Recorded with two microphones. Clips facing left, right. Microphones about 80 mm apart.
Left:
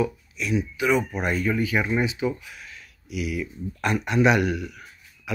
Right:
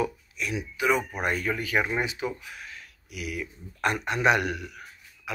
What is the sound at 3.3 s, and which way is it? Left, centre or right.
Speech, right.